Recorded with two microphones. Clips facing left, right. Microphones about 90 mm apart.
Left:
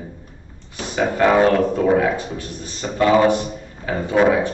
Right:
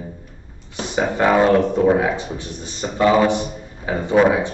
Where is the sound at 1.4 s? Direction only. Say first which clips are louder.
Right 1 dB; 20° right (ahead or behind).